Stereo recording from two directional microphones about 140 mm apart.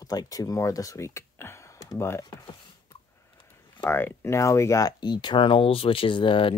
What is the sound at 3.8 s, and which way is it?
Speech, 15° left (ahead or behind).